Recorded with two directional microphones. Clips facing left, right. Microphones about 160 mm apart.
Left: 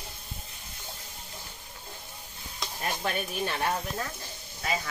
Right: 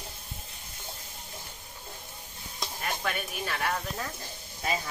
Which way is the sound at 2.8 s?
25° left (ahead or behind).